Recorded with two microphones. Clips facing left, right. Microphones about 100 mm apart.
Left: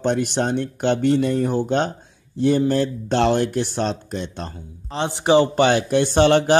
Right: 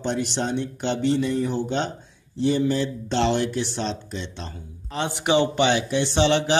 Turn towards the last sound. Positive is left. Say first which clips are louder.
# left 5 dB
turn(degrees=50)  # may be behind; listen again after turning